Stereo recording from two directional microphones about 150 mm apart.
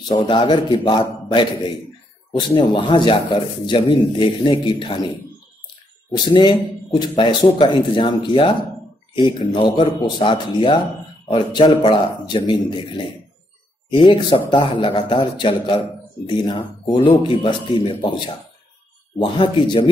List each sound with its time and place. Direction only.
0.1 s speech: 30° left (ahead or behind)
6.2 s speech: 30° left (ahead or behind)
19.1 s speech: 35° left (ahead or behind)